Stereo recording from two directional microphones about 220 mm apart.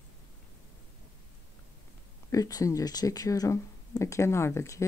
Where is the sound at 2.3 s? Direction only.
15° left (ahead or behind).